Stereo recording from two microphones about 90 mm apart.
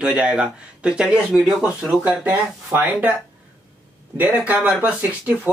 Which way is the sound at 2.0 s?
20° right (ahead or behind).